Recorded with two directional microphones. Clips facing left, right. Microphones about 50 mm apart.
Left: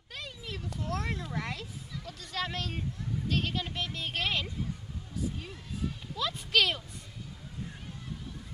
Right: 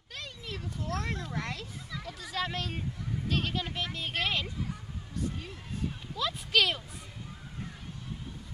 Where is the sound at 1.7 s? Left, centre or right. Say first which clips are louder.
Right 2 dB; right.